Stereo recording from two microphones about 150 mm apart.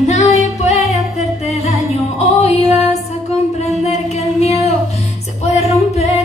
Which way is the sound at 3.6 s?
45° left (ahead or behind).